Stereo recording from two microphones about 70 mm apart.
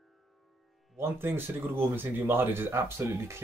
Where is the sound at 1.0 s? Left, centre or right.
Right.